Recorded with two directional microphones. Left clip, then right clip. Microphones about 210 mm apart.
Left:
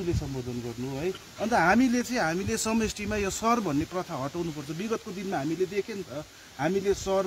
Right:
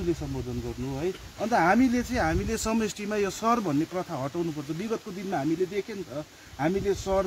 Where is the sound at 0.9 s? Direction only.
5° left (ahead or behind).